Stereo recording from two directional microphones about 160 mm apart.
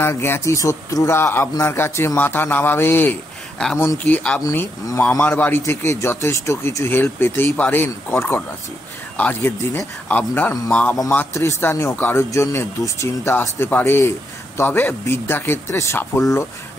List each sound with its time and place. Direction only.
0.0 s a man's voice: 15° left (ahead or behind)
4.4 s a man's voice: 20° left (ahead or behind)